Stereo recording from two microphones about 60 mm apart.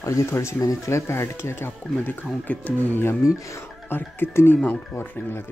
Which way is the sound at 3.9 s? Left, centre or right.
Left.